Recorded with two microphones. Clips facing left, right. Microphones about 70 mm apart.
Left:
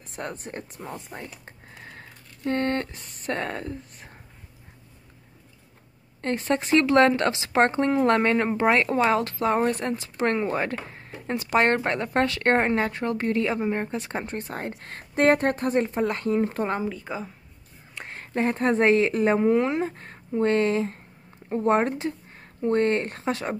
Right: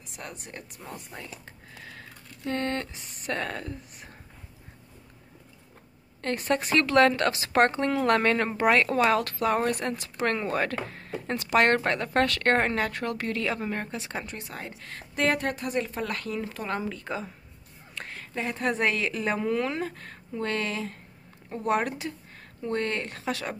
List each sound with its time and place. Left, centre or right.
0.1 s a woman's voice: left
1.2 s typing: left
3.3 s speech: left
6.2 s a woman's voice: left
16.9 s a woman's voice: centre
17.9 s speech: left